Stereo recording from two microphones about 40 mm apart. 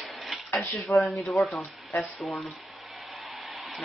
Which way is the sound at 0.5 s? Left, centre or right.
Left.